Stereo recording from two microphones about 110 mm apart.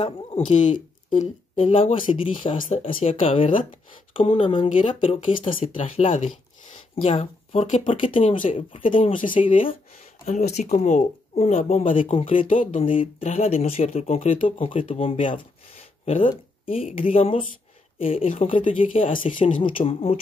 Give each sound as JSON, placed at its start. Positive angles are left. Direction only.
{"t": 0.5, "sound": "speech", "side_deg": 90}
{"t": 1.6, "sound": "speech", "side_deg": 60}
{"t": 5.9, "sound": "speech", "side_deg": 75}
{"t": 7.0, "sound": "speech", "side_deg": 65}
{"t": 7.8, "sound": "speech", "side_deg": 50}
{"t": 10.2, "sound": "speech", "side_deg": 90}
{"t": 13.2, "sound": "speech", "side_deg": 75}
{"t": 14.7, "sound": "speech", "side_deg": 55}